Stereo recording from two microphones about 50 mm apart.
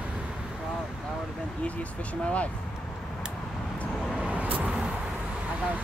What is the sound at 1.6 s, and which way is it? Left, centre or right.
Vehicle, left.